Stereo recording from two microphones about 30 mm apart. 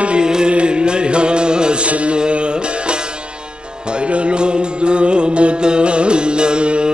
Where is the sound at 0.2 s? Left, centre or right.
Right.